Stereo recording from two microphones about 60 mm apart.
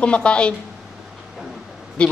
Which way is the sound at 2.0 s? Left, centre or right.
Centre.